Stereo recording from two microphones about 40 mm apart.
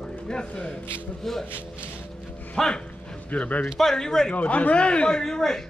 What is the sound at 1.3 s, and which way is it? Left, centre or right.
Speech, centre.